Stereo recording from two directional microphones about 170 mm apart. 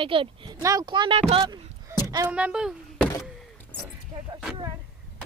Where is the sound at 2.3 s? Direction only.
5° right (ahead or behind).